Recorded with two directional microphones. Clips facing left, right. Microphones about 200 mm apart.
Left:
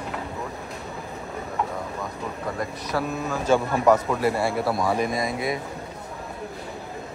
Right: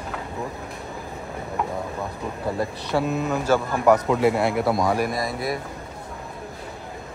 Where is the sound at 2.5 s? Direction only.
25° right (ahead or behind).